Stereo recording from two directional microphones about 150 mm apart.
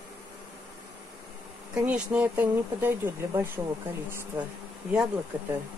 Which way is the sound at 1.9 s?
10° right (ahead or behind).